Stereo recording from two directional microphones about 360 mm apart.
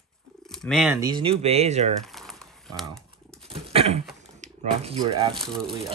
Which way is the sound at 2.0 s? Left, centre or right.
Centre.